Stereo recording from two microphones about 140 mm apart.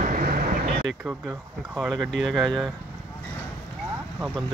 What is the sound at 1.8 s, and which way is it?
Speech, centre (ahead or behind).